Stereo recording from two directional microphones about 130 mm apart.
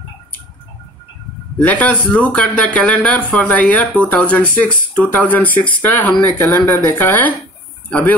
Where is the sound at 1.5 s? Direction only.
10° left (ahead or behind).